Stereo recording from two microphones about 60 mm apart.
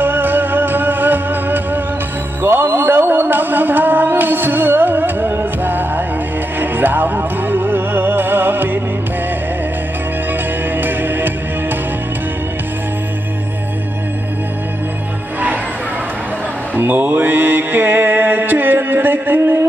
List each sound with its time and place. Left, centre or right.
0.0 s music: right
2.4 s mantra: right
6.6 s music: right
10.8 s music: right
16.7 s mantra: right